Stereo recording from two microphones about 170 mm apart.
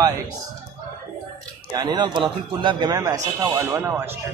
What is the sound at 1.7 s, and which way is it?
A man's voice, 25° right (ahead or behind).